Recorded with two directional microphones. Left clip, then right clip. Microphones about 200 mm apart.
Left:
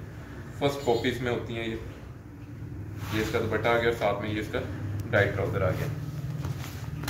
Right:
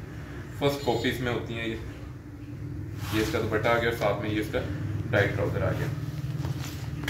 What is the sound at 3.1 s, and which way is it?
A man's voice, centre (ahead or behind).